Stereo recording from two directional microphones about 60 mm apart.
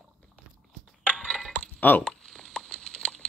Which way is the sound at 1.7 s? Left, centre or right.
Left.